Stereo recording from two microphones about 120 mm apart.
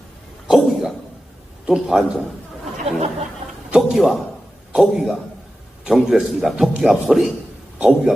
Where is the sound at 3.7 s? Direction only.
Centre (ahead or behind).